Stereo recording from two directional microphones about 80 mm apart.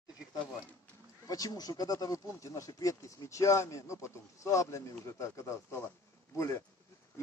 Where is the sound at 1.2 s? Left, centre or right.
Left.